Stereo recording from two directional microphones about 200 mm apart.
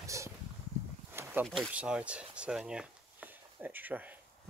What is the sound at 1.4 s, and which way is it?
Speech, centre (ahead or behind).